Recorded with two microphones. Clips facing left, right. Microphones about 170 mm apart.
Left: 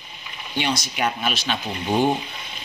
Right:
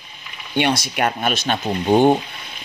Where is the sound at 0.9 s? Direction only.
55° right (ahead or behind).